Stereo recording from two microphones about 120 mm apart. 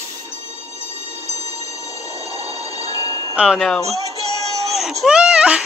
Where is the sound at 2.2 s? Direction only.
60° right (ahead or behind).